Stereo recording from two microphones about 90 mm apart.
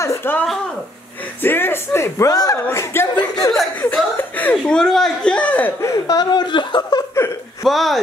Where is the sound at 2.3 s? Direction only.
45° left (ahead or behind).